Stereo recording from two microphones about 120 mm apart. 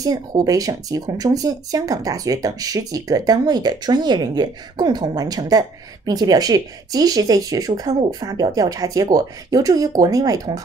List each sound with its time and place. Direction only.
0.0 s speech: 30° right (ahead or behind)